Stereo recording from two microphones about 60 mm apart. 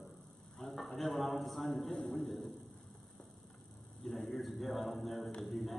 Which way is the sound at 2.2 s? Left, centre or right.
Centre.